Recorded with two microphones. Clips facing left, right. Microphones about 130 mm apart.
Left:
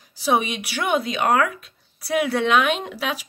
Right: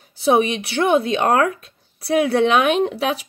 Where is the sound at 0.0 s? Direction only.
25° right (ahead or behind).